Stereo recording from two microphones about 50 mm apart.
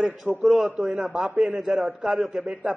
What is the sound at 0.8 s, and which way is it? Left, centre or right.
Speech, centre.